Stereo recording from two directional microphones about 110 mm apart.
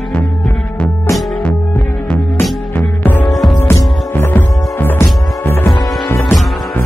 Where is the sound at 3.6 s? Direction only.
20° left (ahead or behind).